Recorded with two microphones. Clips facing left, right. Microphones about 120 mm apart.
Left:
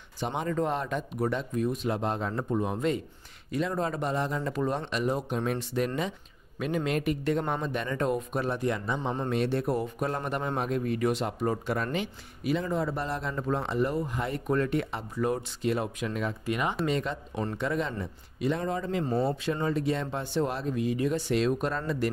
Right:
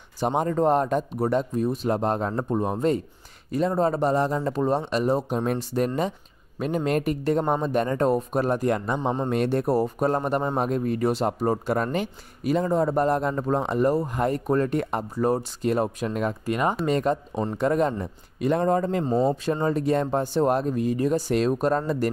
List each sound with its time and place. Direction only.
0.2 s a man's voice: 40° right (ahead or behind)
19.0 s speech: 20° right (ahead or behind)
19.4 s a man's voice: 40° right (ahead or behind)